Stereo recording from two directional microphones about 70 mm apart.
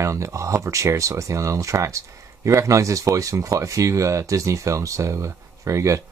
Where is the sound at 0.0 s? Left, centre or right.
Right.